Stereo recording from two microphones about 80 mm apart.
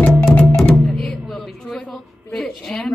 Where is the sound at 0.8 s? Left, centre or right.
Centre.